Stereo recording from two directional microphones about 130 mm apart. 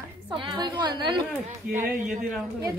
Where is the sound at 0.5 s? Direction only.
35° right (ahead or behind).